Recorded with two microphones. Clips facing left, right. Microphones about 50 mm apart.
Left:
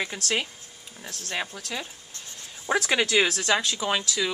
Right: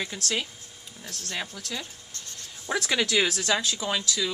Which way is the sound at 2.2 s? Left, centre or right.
Centre.